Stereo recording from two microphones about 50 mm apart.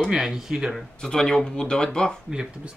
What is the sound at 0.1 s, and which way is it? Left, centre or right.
Speech, centre.